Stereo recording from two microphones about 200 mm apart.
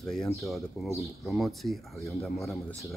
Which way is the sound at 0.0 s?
Centre (ahead or behind).